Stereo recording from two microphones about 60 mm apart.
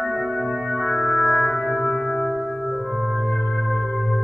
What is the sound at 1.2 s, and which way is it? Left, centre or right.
Music, left.